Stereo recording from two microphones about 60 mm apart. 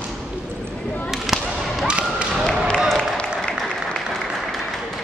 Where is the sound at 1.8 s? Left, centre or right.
Centre.